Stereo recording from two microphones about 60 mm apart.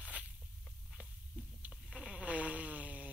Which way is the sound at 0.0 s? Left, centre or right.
Right.